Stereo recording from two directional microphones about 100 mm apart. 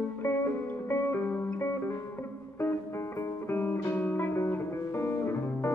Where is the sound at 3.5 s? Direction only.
20° left (ahead or behind).